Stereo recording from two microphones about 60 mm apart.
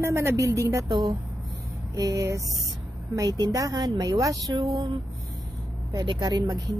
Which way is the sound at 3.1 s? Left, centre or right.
Right.